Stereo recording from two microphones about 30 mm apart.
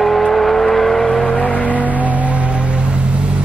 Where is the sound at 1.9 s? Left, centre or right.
Right.